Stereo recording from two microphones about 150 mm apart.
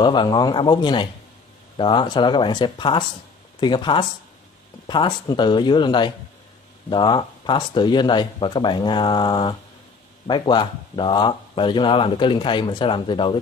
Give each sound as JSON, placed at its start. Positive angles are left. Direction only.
{"t": 0.0, "sound": "speech", "side_deg": 30}